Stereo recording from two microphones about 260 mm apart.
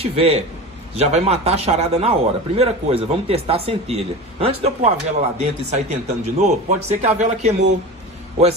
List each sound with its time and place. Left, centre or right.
0.0 s a man's voice: right